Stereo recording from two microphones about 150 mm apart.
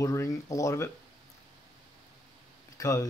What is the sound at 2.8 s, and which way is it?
Speech, 20° left (ahead or behind).